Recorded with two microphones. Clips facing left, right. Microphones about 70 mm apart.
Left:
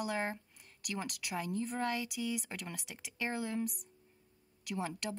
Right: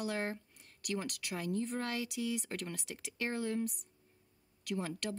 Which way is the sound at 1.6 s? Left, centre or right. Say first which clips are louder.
Left 2 dB; centre.